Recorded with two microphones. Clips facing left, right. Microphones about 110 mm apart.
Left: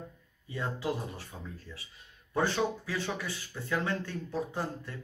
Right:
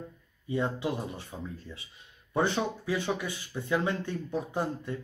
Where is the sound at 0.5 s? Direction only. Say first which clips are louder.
Right 4 dB; 20° right (ahead or behind).